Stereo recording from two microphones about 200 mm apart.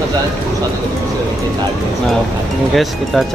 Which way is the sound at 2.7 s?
Centre (ahead or behind).